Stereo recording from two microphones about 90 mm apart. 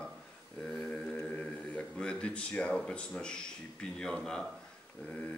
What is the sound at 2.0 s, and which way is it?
Speech, 10° left (ahead or behind).